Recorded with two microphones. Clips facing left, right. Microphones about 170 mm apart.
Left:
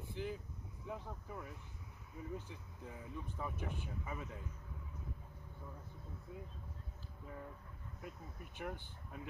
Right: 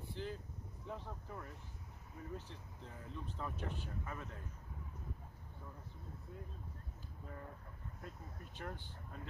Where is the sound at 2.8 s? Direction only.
10° left (ahead or behind).